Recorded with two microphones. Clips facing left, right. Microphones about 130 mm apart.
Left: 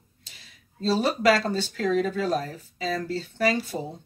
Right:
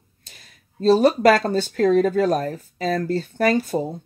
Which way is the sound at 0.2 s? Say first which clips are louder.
Right 3 dB; 50° right (ahead or behind).